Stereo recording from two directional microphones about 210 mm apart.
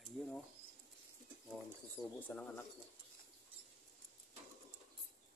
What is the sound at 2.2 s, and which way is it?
Speech, 5° left (ahead or behind).